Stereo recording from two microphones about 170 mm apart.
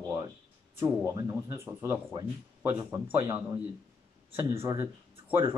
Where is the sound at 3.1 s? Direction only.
15° right (ahead or behind).